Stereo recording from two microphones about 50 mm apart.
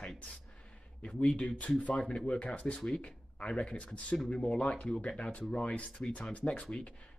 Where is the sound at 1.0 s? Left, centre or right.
Left.